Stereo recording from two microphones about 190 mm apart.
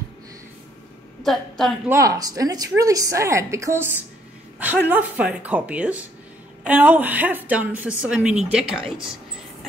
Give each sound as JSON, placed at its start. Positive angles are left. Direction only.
{"t": 1.2, "sound": "a woman's voice", "side_deg": 0}
{"t": 1.9, "sound": "a woman's voice", "side_deg": -15}